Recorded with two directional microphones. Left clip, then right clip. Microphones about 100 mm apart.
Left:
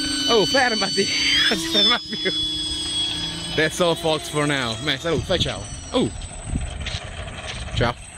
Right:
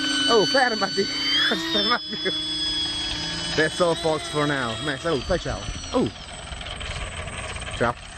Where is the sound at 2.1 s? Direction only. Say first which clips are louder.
Left 3 dB; 25° left (ahead or behind).